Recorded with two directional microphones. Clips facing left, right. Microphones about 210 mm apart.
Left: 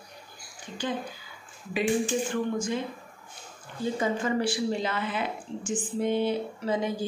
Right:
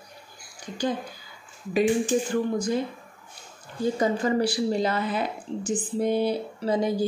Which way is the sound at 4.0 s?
40° right (ahead or behind).